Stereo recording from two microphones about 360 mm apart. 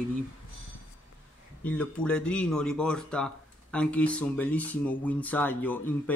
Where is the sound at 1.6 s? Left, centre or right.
Centre.